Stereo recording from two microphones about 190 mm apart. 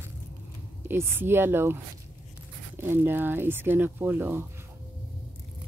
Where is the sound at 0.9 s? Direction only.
10° right (ahead or behind).